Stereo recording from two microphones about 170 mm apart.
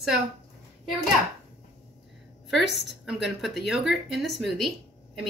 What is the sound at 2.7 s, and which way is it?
Speech, 90° left.